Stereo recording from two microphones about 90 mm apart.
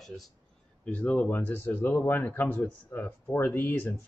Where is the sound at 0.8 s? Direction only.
15° left (ahead or behind).